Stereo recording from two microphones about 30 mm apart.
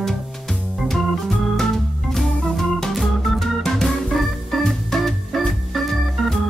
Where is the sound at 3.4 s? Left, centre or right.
Centre.